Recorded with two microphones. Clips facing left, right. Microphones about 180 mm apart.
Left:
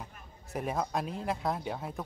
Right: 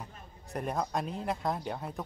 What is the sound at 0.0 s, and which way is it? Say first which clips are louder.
A man's voice: right 1 dB; centre (ahead or behind).